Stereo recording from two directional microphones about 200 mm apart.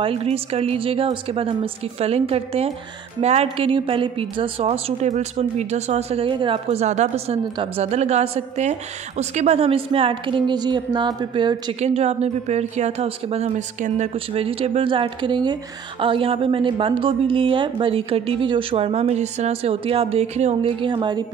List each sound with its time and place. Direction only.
0.0 s a woman's voice: 30° right (ahead or behind)